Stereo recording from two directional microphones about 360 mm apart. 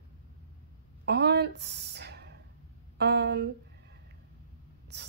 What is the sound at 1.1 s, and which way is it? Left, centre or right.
A woman's voice, right.